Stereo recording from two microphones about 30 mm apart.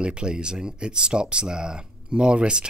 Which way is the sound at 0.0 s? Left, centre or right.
Right.